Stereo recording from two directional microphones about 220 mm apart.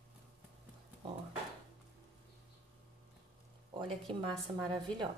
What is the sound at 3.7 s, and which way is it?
A woman's voice, 20° right (ahead or behind).